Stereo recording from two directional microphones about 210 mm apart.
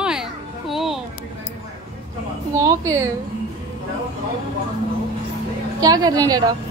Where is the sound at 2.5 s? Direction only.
15° right (ahead or behind).